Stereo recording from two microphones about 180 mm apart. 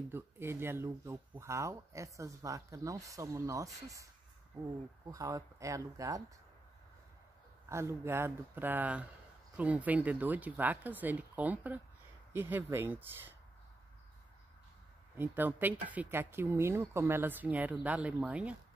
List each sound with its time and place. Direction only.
0.1 s speech: 15° right (ahead or behind)
5.1 s speech: 20° right (ahead or behind)
7.7 s speech: 15° right (ahead or behind)
15.1 s speech: 10° right (ahead or behind)